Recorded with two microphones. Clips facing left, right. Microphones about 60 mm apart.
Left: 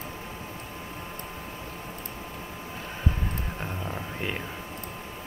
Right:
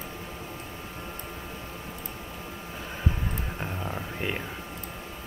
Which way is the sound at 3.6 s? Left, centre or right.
Centre.